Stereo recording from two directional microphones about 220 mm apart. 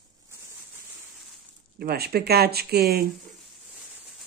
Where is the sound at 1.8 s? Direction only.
45° right (ahead or behind).